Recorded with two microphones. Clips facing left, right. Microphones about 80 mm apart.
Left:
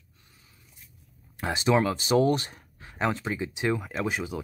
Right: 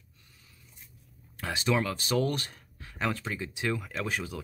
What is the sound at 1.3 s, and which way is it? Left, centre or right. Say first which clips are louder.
Speech: left 5 dB; left.